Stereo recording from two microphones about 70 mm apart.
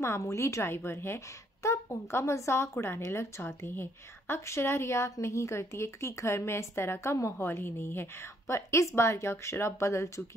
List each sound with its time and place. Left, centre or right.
0.0 s a woman's voice: left